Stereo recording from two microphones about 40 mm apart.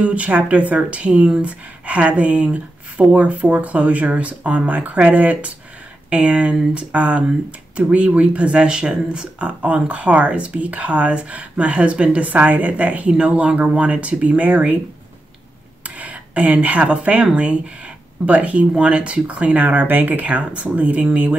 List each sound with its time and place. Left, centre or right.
0.0 s speech: right
9.4 s speech: right
15.8 s a sound: right
16.8 s speech: right
18.2 s speech: right